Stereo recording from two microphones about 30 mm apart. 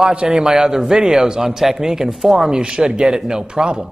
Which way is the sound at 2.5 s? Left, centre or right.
Right.